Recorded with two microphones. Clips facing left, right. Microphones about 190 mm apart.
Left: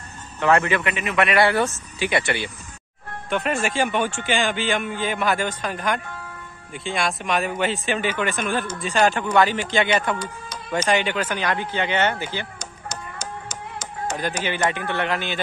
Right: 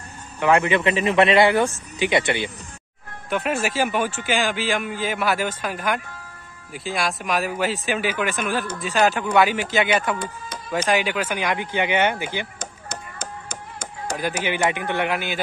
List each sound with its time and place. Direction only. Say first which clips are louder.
0.4 s a man's voice: right 1 dB; 10° right (ahead or behind)
0.7 s speech: right 4 dB; 25° right (ahead or behind)
3.3 s speech: even; 5° right (ahead or behind)
10.1 s speech: right 1 dB; 55° right (ahead or behind)
10.9 s speech: even; 5° right (ahead or behind)
12.5 s clapping: even; 55° right (ahead or behind)
14.1 s speech: right 2 dB; 10° right (ahead or behind)